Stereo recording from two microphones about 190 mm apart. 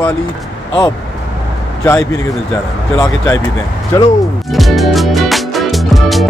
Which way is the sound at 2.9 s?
15° left (ahead or behind).